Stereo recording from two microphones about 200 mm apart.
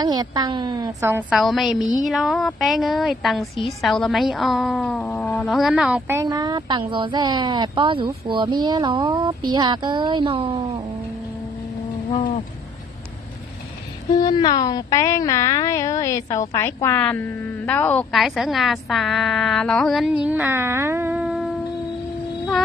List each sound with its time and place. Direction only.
0.0 s speech: 20° right (ahead or behind)
1.3 s a woman's voice: centre (ahead or behind)
6.2 s speech: 20° right (ahead or behind)
14.1 s a woman's voice: 20° left (ahead or behind); by 21.5 s 5° right (ahead or behind)